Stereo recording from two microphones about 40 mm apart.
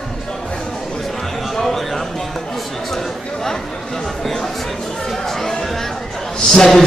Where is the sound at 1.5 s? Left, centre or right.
Centre.